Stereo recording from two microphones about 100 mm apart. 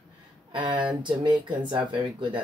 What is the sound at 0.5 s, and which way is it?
Speech, 55° right (ahead or behind).